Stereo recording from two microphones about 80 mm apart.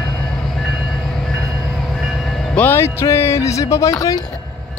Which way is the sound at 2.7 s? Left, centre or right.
Left.